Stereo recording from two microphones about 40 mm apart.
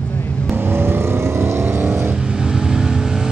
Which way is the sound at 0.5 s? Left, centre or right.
Right.